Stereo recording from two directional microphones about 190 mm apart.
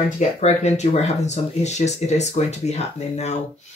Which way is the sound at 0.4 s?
35° left (ahead or behind).